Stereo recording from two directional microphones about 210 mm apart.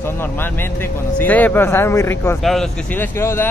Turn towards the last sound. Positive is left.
turn(degrees=10)  # may be behind; listen again after turning